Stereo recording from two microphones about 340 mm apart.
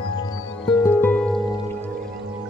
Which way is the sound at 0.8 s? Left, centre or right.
Centre.